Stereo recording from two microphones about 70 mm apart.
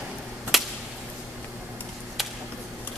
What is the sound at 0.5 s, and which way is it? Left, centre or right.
Whip, centre.